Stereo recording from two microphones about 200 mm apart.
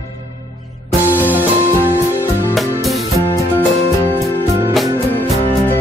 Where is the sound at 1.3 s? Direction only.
10° right (ahead or behind).